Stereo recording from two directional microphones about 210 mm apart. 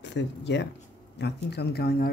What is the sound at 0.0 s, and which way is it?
Speech, 55° left (ahead or behind).